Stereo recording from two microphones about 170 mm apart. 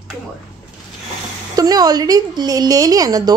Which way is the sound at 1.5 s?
20° right (ahead or behind).